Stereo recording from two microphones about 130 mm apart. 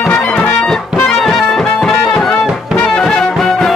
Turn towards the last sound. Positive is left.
turn(degrees=5)  # may be behind; listen again after turning